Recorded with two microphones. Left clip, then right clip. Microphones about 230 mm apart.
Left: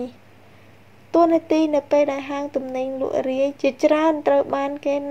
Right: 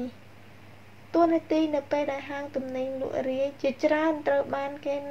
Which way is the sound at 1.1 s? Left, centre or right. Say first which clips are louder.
Left 6 dB; left.